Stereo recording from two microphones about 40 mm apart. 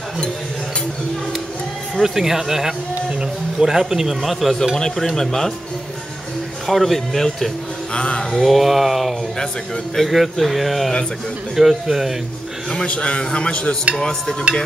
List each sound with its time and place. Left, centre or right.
2.0 s speech: centre
3.2 s music: centre
3.9 s speech: centre
4.7 s speech: centre
6.7 s speech: centre
7.9 s a man's voice: left
8.4 s speech: centre
12.7 s a man's voice: left
13.9 s speech: centre